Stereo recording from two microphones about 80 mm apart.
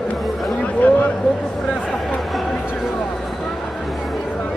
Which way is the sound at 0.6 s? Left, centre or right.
Centre.